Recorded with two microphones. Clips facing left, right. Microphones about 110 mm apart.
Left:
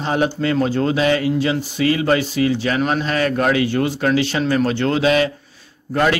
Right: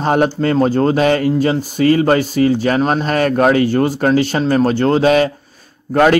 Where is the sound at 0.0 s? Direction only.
45° right (ahead or behind).